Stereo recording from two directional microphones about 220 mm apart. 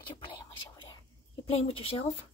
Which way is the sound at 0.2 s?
20° left (ahead or behind).